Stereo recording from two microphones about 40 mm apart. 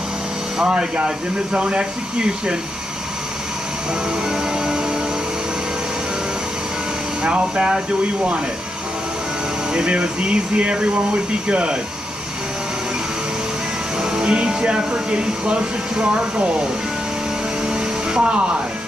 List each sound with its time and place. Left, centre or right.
0.6 s speech: right
4.1 s music: centre
7.2 s speech: right
9.7 s speech: right
13.9 s music: right
14.5 s speech: right
17.6 s vacuum cleaner: centre